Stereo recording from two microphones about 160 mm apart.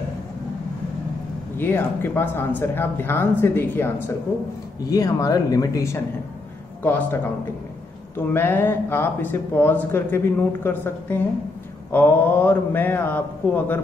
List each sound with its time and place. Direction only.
1.6 s speech: 15° left (ahead or behind)
8.3 s speech: 15° left (ahead or behind)